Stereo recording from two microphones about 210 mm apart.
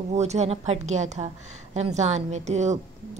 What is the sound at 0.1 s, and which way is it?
A woman's voice, 30° right (ahead or behind).